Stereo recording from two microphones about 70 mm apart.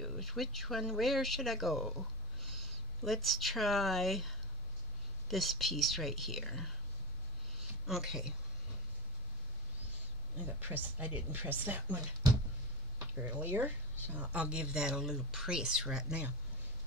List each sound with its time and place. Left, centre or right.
0.0 s speech: centre
7.8 s speech: centre
10.4 s speech: right
13.1 s speech: right